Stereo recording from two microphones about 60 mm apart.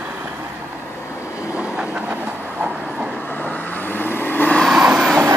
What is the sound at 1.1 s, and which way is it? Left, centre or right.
Train, left.